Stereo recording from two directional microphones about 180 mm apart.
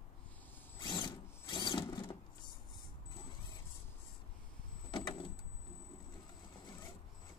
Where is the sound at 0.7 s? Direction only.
25° left (ahead or behind).